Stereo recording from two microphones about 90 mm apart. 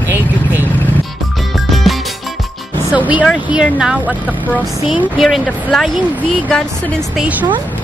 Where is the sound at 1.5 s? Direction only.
Centre (ahead or behind).